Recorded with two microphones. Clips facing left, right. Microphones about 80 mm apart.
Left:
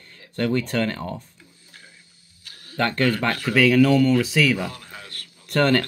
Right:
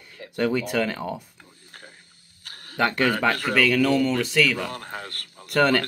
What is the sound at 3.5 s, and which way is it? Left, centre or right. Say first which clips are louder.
Speech: left 6 dB; centre.